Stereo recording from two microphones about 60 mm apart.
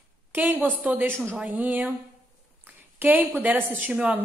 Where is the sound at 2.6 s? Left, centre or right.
Right.